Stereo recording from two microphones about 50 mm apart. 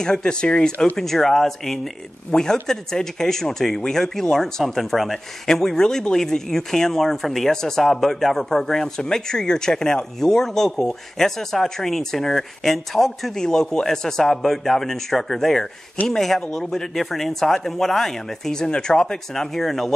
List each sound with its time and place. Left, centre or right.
0.0 s speech: centre
0.9 s speech: centre